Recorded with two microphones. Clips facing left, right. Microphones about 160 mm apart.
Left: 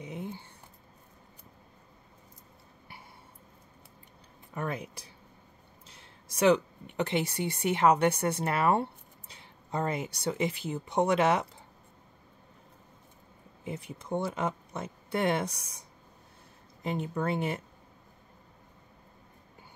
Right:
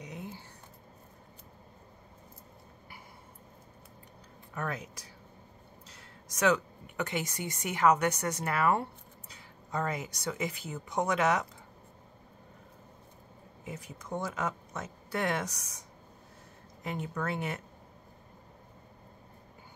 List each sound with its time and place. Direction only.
0.0 s a sound: 25° left (ahead or behind)
4.6 s speech: 30° left (ahead or behind)
13.7 s speech: 30° left (ahead or behind)
16.8 s speech: 30° left (ahead or behind)